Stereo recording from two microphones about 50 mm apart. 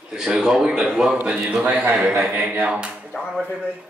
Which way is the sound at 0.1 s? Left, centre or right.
Centre.